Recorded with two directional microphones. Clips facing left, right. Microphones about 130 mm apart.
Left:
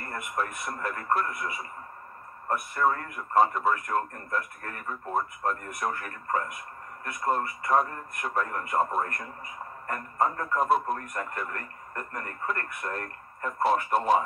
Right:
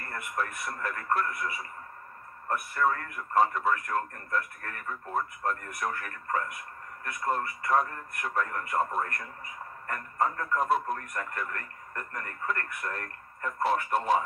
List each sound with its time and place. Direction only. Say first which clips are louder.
0.0 s speech: left 2 dB; 25° left (ahead or behind)